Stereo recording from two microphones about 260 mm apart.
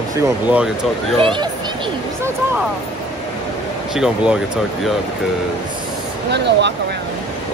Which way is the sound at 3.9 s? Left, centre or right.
Centre.